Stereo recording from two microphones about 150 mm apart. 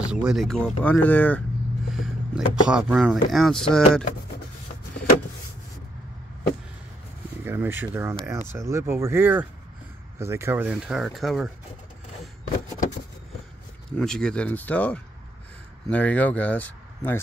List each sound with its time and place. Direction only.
0.0 s speech: 5° right (ahead or behind); by 1.4 s 10° left (ahead or behind)
1.9 s speech: 5° right (ahead or behind)
7.4 s speech: 15° right (ahead or behind)
13.9 s speech: 5° left (ahead or behind)